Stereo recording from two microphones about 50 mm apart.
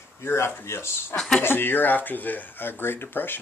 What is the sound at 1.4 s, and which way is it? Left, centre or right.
Speech, left.